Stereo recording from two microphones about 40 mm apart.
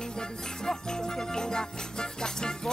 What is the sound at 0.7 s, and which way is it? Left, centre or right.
Music, centre.